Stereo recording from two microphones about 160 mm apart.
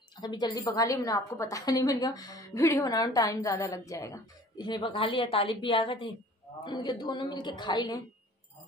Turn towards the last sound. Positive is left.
turn(degrees=25)  # may be behind; listen again after turning